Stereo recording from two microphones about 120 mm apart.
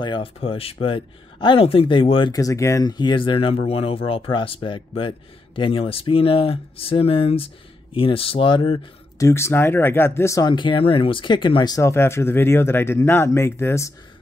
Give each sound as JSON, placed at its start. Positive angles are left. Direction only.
{"t": 0.0, "sound": "speech", "side_deg": 45}
{"t": 2.3, "sound": "speech", "side_deg": 25}
{"t": 9.2, "sound": "speech", "side_deg": 20}
{"t": 10.4, "sound": "speech", "side_deg": 40}
{"t": 11.8, "sound": "speech", "side_deg": 20}